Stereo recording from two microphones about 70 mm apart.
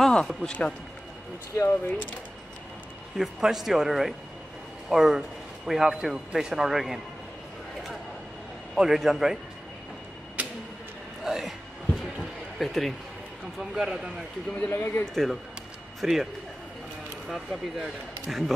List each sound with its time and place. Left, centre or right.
0.0 s music: centre
0.5 s a man's voice: centre
1.7 s speech: left
3.2 s speech: centre
8.7 s a man's voice: centre
10.4 s tick-tock: right
11.2 s a sound: centre
13.6 s speech: centre
14.6 s speech: left
16.0 s speech: centre
17.3 s speech: centre